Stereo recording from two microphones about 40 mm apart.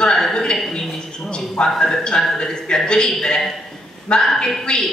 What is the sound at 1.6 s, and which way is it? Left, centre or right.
A woman's voice, centre.